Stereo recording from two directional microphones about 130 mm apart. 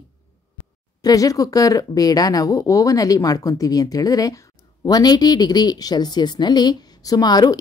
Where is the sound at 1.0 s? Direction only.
25° left (ahead or behind).